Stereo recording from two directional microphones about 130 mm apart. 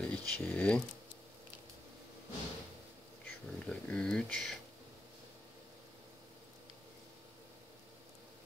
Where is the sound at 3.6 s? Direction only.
5° left (ahead or behind).